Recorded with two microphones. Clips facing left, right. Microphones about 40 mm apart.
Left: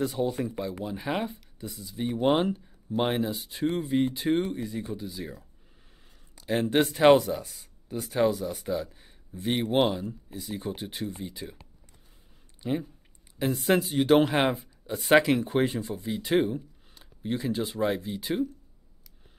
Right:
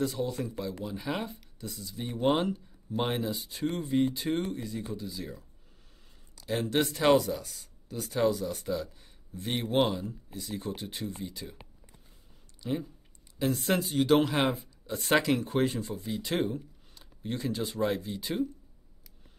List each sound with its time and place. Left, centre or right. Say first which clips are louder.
0.0 s speech: left 3 dB; centre
6.3 s speech: left 4 dB; left
7.2 s speech: left 3 dB; centre
12.6 s speech: left 3 dB; centre